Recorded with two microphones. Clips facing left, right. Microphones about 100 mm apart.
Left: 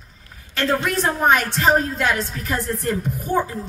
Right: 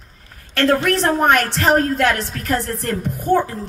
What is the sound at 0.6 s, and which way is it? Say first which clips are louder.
A woman's voice: right 4 dB; 65° right (ahead or behind).